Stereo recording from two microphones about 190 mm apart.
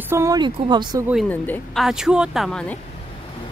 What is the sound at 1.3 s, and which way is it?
Speech, 10° left (ahead or behind).